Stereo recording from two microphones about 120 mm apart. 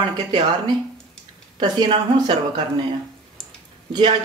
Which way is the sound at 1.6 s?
45° right (ahead or behind).